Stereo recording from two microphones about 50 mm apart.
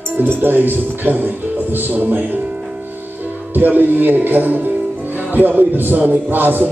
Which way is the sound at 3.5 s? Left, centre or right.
Right.